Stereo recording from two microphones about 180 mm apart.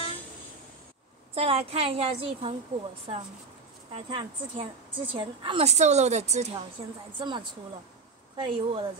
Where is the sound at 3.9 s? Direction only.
30° right (ahead or behind).